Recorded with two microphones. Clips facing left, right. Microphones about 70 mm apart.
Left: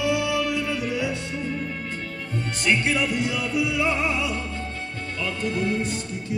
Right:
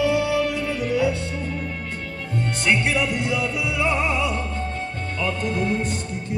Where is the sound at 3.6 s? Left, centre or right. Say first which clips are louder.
Left 3 dB; right.